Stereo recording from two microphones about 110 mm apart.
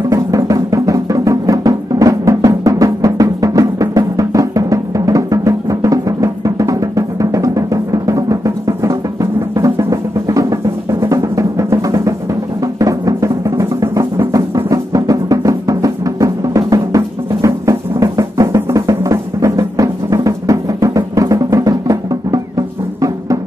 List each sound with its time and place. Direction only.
0.1 s music: 30° right (ahead or behind)